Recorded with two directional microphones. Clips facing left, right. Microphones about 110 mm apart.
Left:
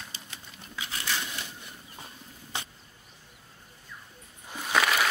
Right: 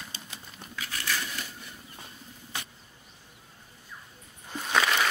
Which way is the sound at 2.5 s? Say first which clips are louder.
Left 2 dB; 25° left (ahead or behind).